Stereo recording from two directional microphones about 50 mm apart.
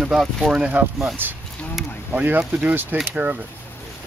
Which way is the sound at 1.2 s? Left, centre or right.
Right.